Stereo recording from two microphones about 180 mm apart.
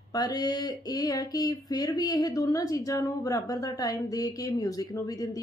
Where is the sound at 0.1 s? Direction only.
20° left (ahead or behind).